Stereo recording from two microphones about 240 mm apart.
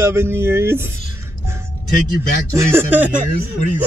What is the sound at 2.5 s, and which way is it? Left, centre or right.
Speech, centre.